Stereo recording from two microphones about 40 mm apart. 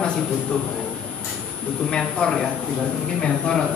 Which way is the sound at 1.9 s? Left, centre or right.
Centre.